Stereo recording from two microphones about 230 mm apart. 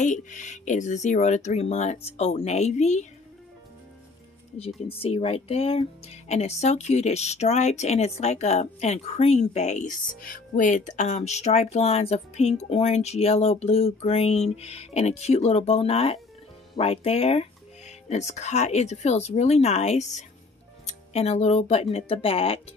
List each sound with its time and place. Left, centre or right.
0.0 s speech: left
4.6 s speech: left